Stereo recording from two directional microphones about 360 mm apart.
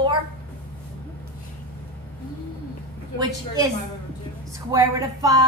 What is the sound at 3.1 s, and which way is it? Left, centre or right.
Speech, centre.